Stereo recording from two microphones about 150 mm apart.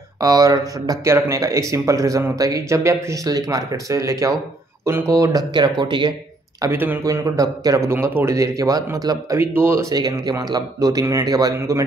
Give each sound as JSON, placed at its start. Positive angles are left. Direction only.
{"t": 0.2, "sound": "speech", "side_deg": -25}
{"t": 6.6, "sound": "speech", "side_deg": -15}